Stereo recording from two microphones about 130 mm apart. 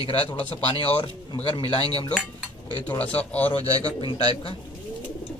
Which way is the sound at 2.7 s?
30° left (ahead or behind).